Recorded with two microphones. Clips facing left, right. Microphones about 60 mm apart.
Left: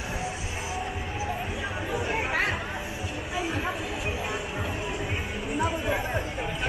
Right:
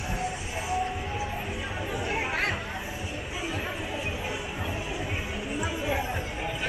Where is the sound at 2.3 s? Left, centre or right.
Centre.